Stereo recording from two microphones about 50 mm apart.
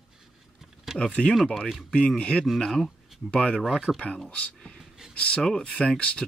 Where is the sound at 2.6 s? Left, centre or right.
Centre.